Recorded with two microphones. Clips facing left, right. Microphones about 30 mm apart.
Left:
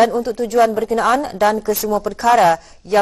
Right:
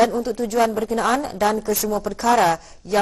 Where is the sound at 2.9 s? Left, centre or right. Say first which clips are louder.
Left 5 dB; centre.